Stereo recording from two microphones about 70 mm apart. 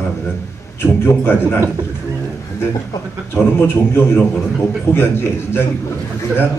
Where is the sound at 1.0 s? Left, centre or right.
Left.